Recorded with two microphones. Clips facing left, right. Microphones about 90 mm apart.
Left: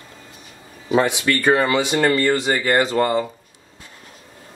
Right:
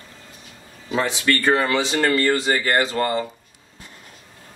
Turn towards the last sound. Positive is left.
turn(degrees=15)  # may be behind; listen again after turning